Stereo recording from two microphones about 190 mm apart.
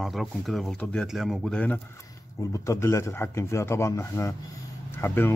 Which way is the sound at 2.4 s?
15° left (ahead or behind).